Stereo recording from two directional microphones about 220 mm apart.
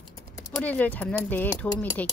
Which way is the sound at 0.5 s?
5° left (ahead or behind).